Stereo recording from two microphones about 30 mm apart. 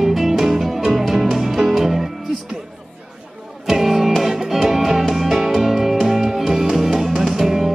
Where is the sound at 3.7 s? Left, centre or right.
Centre.